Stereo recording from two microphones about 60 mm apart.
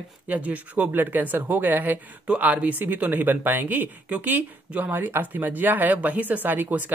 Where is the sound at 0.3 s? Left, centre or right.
Right.